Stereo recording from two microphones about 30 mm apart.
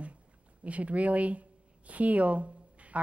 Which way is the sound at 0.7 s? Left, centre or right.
Right.